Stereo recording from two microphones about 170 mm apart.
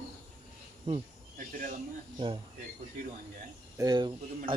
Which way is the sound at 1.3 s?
55° right (ahead or behind).